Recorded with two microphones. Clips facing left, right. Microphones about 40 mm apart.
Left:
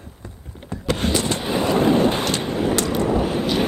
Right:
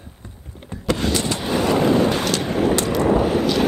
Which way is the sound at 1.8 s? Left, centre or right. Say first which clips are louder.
Left 1 dB; left.